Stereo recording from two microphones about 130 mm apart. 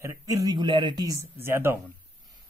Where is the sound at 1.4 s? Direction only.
15° right (ahead or behind).